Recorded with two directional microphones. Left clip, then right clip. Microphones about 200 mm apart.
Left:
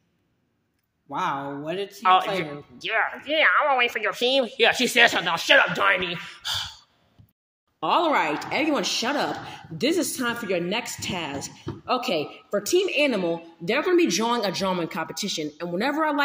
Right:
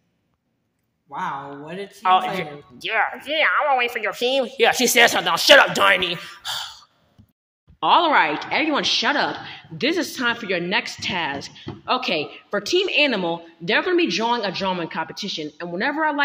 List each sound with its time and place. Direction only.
1.1 s speech: 45° left (ahead or behind)
2.0 s a woman's voice: 5° left (ahead or behind)
5.4 s speech: 15° right (ahead or behind)
6.4 s throat clearing: 5° left (ahead or behind)
7.8 s a woman's voice: centre (ahead or behind)